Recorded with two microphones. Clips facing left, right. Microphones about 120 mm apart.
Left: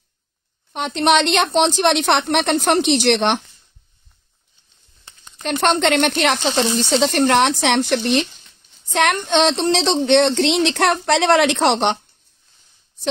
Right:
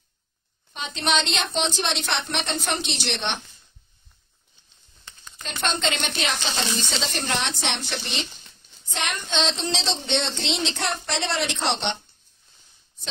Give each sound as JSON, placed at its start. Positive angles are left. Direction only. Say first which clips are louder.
{"t": 0.7, "sound": "a woman's voice", "louder": "left 9 dB", "side_deg": 60}
{"t": 5.4, "sound": "a woman's voice", "louder": "left 10 dB", "side_deg": 65}